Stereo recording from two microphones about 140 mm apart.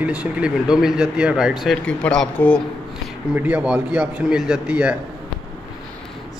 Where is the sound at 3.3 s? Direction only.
10° right (ahead or behind).